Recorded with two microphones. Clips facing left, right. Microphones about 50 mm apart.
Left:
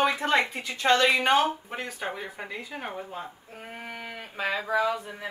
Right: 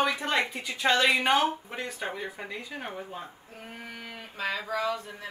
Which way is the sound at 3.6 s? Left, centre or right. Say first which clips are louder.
Left 3 dB; centre.